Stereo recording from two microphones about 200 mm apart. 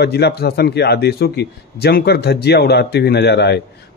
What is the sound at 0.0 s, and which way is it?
A man's voice, 55° left (ahead or behind).